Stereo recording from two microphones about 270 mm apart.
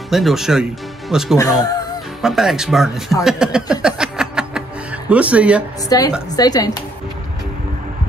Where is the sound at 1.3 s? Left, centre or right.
Centre.